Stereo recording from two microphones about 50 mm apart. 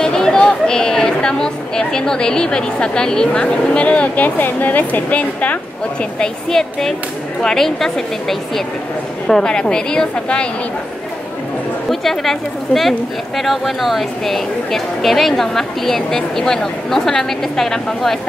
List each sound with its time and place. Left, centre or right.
0.0 s speech: centre; by 5.6 s left
6.1 s a woman's voice: centre
9.3 s a woman's voice: centre
11.9 s a woman's voice: centre